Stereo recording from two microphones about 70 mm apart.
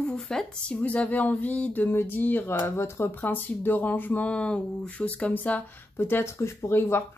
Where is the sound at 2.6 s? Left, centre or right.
Left.